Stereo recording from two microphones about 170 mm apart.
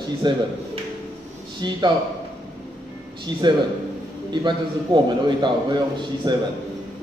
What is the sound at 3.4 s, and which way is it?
A man's voice, 25° right (ahead or behind).